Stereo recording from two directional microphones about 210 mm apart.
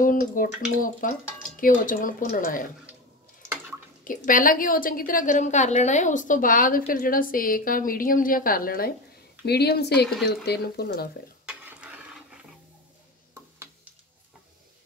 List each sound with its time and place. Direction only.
0.0 s a woman's voice: 40° left (ahead or behind)
4.0 s a woman's voice: 40° left (ahead or behind)
11.4 s a sound: 5° right (ahead or behind)